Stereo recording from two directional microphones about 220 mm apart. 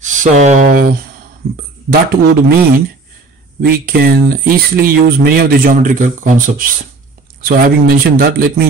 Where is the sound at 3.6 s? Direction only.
45° right (ahead or behind).